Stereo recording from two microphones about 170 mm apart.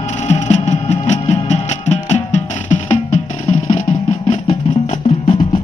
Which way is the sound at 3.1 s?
40° left (ahead or behind).